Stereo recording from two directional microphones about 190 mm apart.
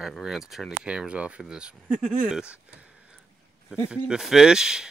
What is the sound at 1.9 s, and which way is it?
Speech, 40° right (ahead or behind).